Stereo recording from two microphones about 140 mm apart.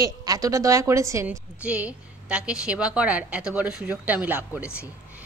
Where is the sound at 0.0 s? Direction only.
25° right (ahead or behind).